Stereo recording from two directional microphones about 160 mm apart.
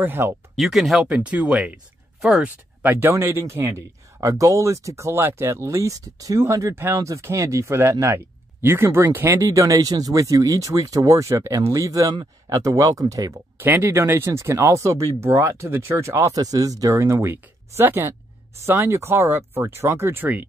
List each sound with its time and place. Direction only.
0.0 s speech: 15° right (ahead or behind)
0.6 s speech: centre (ahead or behind)